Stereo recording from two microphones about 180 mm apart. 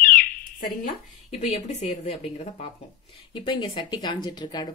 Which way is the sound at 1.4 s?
35° left (ahead or behind).